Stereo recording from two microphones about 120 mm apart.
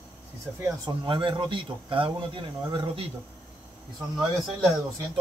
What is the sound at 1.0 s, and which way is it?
Speech, 45° right (ahead or behind).